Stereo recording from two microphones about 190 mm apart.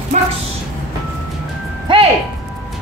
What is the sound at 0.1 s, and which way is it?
Bow-wow, 35° right (ahead or behind).